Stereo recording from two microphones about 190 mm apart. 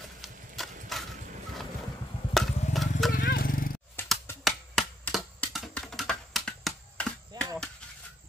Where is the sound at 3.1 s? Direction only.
50° left (ahead or behind).